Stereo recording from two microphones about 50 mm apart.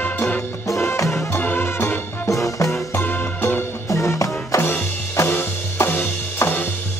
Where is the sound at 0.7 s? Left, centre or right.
Left.